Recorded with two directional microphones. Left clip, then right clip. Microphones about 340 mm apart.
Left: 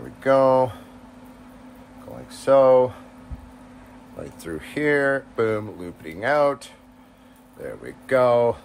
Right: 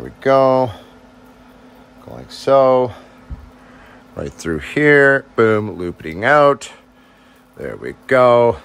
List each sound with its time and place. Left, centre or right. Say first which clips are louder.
0.2 s speech: right 4 dB; right
2.2 s speech: right 4 dB; right
4.2 s speech: right 10 dB; right